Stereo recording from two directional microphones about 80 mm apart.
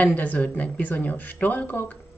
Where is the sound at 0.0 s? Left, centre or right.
Centre.